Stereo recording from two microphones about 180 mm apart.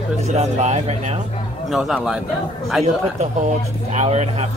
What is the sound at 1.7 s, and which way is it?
Speech, centre (ahead or behind).